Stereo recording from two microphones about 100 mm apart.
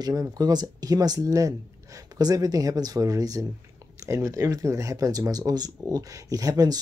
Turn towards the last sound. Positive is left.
turn(degrees=-40)  # may be behind; listen again after turning